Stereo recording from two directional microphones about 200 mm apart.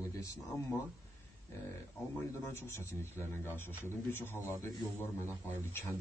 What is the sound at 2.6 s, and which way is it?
A man's voice, 10° left (ahead or behind).